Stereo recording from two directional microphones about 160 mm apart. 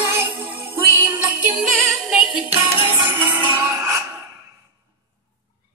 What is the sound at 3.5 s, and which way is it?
Music, 15° right (ahead or behind).